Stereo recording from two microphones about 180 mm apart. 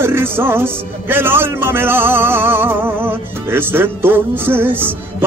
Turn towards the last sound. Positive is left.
turn(degrees=-10)  # may be behind; listen again after turning